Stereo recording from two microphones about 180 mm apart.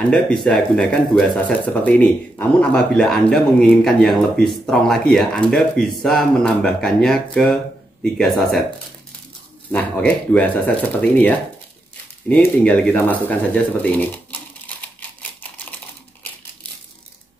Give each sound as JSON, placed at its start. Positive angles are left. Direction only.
{"t": 0.1, "sound": "speech", "side_deg": 5}
{"t": 9.7, "sound": "speech", "side_deg": 10}